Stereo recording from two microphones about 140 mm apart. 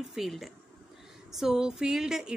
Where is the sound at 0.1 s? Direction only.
Centre (ahead or behind).